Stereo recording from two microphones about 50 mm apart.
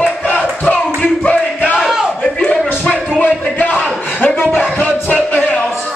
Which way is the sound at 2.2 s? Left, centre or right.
Left.